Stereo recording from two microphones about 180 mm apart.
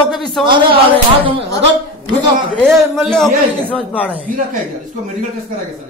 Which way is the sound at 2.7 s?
Centre (ahead or behind).